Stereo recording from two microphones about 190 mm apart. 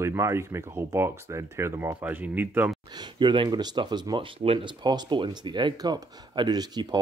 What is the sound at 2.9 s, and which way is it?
Speech, 25° right (ahead or behind).